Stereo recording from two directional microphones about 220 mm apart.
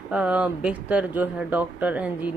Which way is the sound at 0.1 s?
5° right (ahead or behind).